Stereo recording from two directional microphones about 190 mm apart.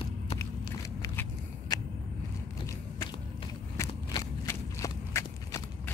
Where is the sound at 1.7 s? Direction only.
20° left (ahead or behind).